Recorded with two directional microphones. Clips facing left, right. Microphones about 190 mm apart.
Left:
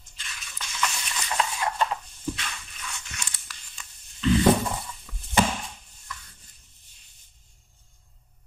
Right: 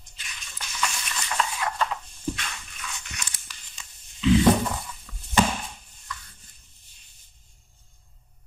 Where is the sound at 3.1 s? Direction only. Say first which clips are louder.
Even; 15° right (ahead or behind).